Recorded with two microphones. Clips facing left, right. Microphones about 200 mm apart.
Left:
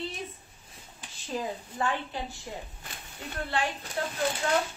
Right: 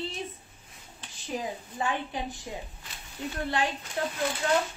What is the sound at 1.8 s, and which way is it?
A woman's voice, 15° right (ahead or behind).